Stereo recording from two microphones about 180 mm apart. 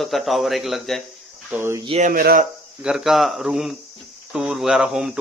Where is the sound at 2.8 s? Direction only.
5° right (ahead or behind).